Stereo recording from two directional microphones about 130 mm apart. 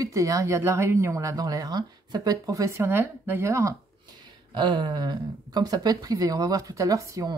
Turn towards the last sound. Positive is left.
turn(degrees=-25)  # may be behind; listen again after turning